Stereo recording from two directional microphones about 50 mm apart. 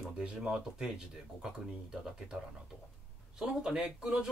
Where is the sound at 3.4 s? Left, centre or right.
Centre.